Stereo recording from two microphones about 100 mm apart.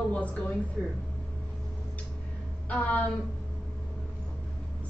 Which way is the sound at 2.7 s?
15° left (ahead or behind).